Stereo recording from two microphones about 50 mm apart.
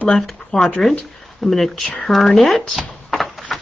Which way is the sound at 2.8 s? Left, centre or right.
Centre.